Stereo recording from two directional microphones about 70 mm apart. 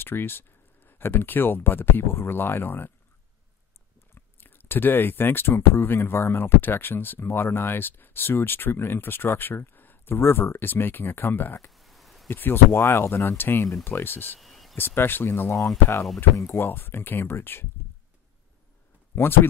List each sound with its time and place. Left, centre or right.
0.0 s speech: left
4.1 s speech: left
11.7 s a sound: centre
12.3 s speech: left
14.4 s a sound: centre
14.8 s speech: left
19.1 s a man's voice: left